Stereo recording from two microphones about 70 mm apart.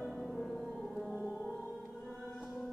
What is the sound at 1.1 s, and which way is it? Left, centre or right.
Music, left.